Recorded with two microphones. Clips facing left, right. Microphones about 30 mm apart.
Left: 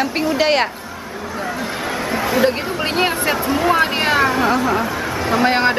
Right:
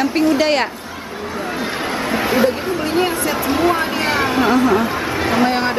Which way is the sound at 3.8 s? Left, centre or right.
Left.